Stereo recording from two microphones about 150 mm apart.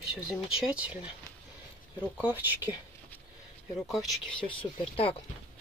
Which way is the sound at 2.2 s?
10° right (ahead or behind).